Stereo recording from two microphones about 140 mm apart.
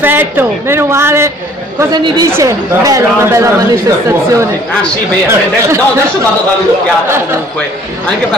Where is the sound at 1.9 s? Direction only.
30° right (ahead or behind).